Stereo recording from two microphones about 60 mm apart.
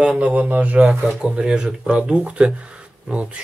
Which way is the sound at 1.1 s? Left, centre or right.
Centre.